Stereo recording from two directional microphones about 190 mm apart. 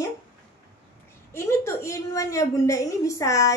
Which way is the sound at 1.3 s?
15° left (ahead or behind).